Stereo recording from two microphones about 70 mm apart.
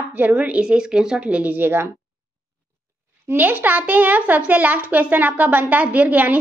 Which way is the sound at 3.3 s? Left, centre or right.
Right.